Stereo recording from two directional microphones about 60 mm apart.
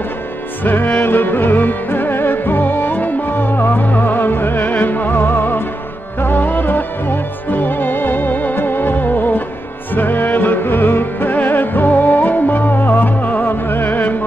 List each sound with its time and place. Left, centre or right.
0.7 s music: left